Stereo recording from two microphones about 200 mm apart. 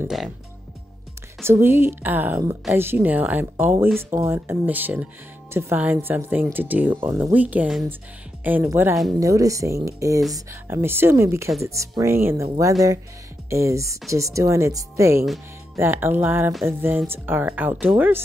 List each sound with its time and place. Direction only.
1.4 s a woman's voice: 10° right (ahead or behind)
13.5 s a woman's voice: 15° right (ahead or behind)